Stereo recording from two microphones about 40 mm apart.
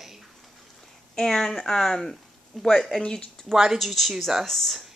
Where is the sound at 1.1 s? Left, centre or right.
Centre.